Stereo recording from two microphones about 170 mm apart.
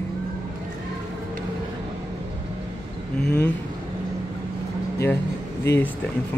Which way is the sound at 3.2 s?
5° left (ahead or behind).